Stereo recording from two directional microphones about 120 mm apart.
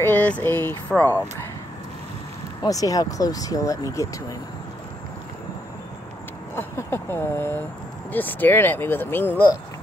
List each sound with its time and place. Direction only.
0.0 s speech: 15° left (ahead or behind)
2.6 s speech: 30° left (ahead or behind)
6.5 s speech: 20° left (ahead or behind)